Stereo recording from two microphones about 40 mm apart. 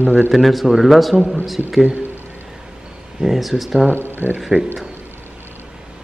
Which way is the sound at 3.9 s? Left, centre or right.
Left.